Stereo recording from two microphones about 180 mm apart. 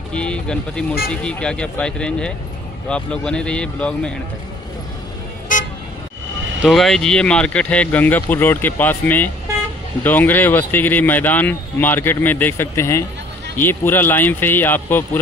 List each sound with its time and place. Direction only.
0.1 s speech: 5° left (ahead or behind)
6.6 s speech: centre (ahead or behind)